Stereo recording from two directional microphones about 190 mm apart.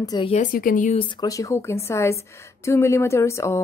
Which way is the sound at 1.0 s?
25° left (ahead or behind).